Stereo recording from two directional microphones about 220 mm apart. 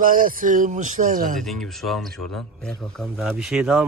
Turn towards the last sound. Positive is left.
turn(degrees=-5)  # may be behind; listen again after turning